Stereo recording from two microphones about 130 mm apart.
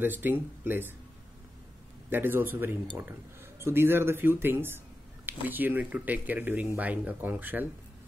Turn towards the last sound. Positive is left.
turn(degrees=-15)  # may be behind; listen again after turning